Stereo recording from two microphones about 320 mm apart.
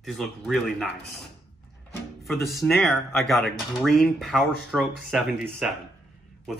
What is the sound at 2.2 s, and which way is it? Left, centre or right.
Speech, centre.